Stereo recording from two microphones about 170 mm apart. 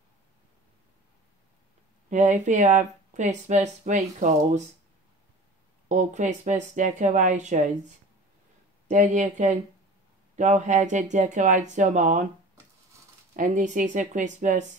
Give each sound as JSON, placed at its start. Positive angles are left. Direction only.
{"t": 2.0, "sound": "speech", "side_deg": -45}
{"t": 5.9, "sound": "speech", "side_deg": -45}
{"t": 13.4, "sound": "speech", "side_deg": -50}